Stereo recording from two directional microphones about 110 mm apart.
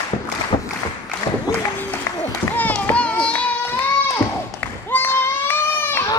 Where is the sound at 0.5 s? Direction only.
65° left (ahead or behind).